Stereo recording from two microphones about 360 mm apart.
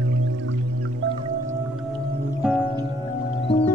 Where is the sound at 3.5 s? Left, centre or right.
Centre.